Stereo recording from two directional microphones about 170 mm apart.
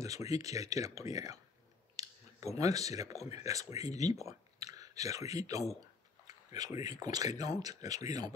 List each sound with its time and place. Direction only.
0.0 s speech: 20° right (ahead or behind)
2.0 s clicking: 20° right (ahead or behind)
2.5 s speech: 20° right (ahead or behind)